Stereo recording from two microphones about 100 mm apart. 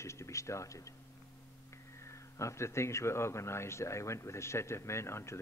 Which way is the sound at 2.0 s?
30° left (ahead or behind).